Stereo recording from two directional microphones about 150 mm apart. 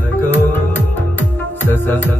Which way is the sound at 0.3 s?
15° left (ahead or behind).